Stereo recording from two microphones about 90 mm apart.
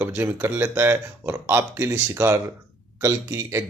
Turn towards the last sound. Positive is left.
turn(degrees=-30)  # may be behind; listen again after turning